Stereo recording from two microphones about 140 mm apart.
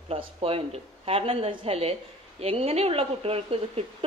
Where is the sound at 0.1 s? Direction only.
45° right (ahead or behind).